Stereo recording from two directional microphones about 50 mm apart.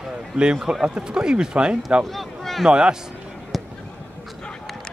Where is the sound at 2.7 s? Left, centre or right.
Centre.